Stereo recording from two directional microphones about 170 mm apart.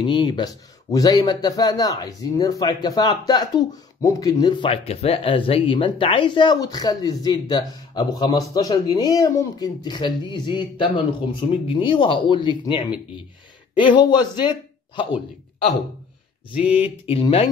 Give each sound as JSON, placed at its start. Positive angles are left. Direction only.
{"t": 0.0, "sound": "a man's voice", "side_deg": 25}
{"t": 16.8, "sound": "speech", "side_deg": 35}